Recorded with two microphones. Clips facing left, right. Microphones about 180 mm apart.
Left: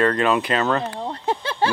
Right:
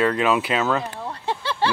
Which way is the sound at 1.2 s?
50° left (ahead or behind).